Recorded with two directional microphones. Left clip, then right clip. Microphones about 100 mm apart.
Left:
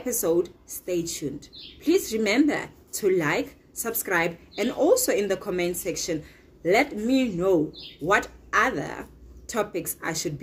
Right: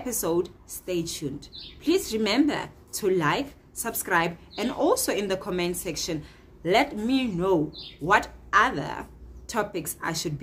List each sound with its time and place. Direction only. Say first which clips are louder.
0.0 s speech: left 3 dB; 15° right (ahead or behind)